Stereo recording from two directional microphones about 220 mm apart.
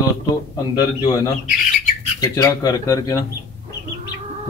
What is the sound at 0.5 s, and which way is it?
Speech, 15° left (ahead or behind).